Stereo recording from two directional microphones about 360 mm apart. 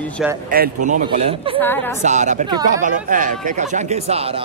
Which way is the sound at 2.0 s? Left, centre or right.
Centre.